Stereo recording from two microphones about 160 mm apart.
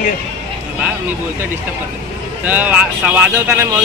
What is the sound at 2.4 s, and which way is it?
Speech, 10° right (ahead or behind).